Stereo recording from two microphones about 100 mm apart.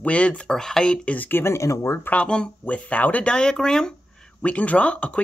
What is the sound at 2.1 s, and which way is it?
Speech, 10° left (ahead or behind).